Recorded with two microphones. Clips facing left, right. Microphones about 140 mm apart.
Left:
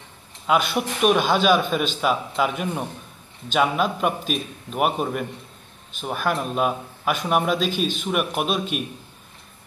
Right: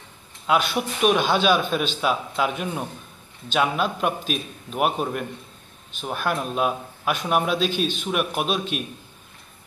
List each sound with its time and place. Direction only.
0.5 s a man's voice: 5° left (ahead or behind)